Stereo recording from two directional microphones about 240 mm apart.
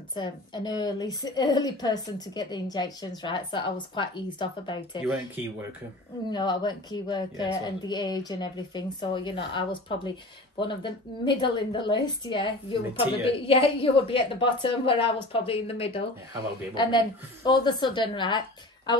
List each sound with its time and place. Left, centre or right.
0.1 s a woman's voice: centre
5.0 s speech: centre
6.3 s a woman's voice: centre